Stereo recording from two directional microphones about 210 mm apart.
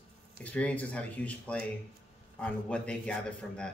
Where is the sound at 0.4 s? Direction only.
5° left (ahead or behind).